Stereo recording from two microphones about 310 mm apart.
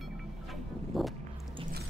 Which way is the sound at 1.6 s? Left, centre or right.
Right.